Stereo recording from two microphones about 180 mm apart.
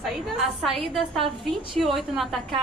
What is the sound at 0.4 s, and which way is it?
A woman's voice, centre (ahead or behind).